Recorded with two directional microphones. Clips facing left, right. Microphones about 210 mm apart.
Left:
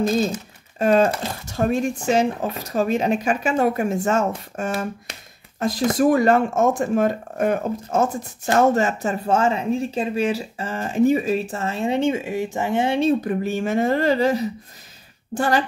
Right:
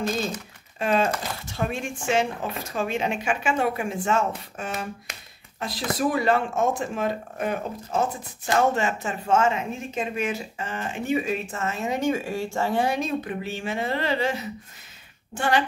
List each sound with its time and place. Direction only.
0.7 s speech: 40° left (ahead or behind)
13.2 s speech: 40° left (ahead or behind)